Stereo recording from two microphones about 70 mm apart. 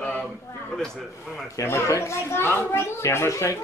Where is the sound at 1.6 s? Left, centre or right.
Left.